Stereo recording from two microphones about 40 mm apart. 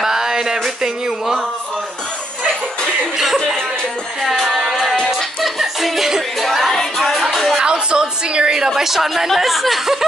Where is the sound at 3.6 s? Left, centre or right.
Centre.